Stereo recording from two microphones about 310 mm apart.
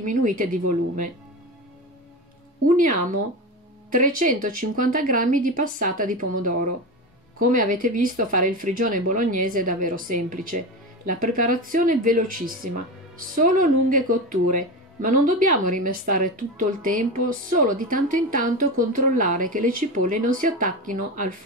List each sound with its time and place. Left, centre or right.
0.0 s speech: right
2.7 s speech: right